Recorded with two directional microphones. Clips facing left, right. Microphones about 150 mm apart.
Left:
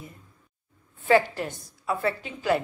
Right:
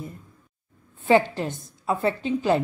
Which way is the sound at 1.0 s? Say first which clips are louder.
Right 2 dB; 20° right (ahead or behind).